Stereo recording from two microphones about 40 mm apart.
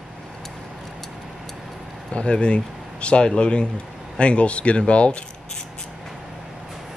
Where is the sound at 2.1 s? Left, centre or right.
Left.